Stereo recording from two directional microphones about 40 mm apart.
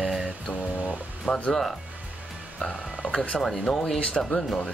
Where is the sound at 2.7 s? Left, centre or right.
Left.